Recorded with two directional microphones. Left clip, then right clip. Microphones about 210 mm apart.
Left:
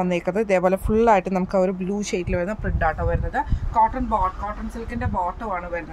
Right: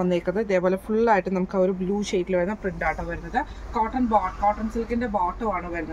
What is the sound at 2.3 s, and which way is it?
Speech, 45° left (ahead or behind).